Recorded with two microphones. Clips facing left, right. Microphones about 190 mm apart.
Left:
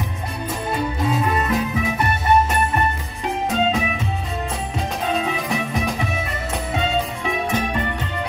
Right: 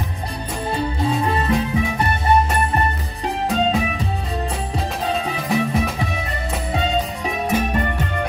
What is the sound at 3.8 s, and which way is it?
Music, 35° right (ahead or behind).